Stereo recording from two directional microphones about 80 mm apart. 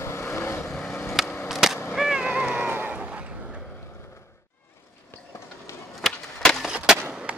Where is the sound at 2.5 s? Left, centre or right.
Right.